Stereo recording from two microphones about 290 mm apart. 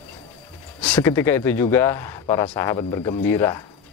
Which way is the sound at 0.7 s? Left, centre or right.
Centre.